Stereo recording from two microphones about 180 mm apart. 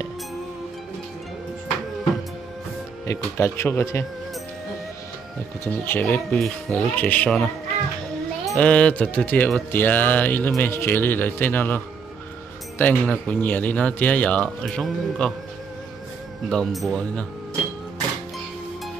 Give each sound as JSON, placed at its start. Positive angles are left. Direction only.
{"t": 3.1, "sound": "speech", "side_deg": 15}
{"t": 5.6, "sound": "speech", "side_deg": 15}
{"t": 8.5, "sound": "speech", "side_deg": 5}
{"t": 16.4, "sound": "speech", "side_deg": 0}